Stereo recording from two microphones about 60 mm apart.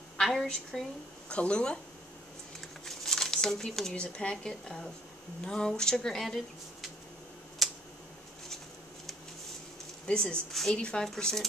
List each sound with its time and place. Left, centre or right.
0.2 s a woman's voice: centre
1.3 s speech: centre
2.8 s speech: centre
7.6 s tick-tock: centre
10.0 s speech: centre
10.5 s a woman's voice: centre
10.8 s speech: centre